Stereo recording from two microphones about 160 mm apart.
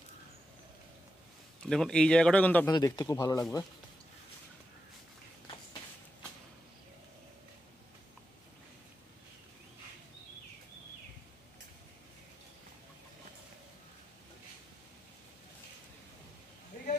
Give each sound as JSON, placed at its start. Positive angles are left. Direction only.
{"t": 1.6, "sound": "speech", "side_deg": 5}
{"t": 2.7, "sound": "speech", "side_deg": 25}